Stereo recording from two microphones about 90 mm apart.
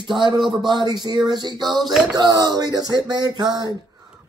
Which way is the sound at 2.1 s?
45° right (ahead or behind).